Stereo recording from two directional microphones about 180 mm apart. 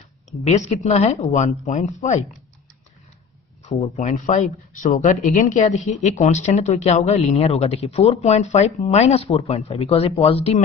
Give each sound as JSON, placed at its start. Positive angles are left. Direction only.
{"t": 0.4, "sound": "speech", "side_deg": 40}
{"t": 3.6, "sound": "speech", "side_deg": 40}